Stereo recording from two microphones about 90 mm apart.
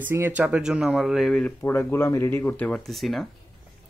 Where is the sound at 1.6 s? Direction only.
25° left (ahead or behind).